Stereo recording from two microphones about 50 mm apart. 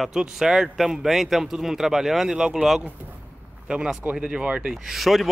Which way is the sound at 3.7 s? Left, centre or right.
Right.